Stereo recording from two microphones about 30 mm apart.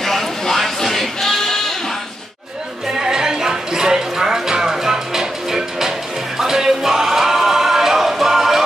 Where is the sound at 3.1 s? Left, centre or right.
Centre.